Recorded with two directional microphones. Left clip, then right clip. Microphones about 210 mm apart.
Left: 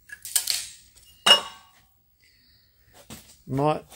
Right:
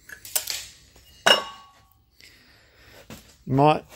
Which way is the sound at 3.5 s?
30° right (ahead or behind).